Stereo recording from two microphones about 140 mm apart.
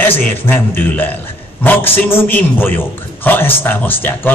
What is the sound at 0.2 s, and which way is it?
A man's voice, 15° left (ahead or behind).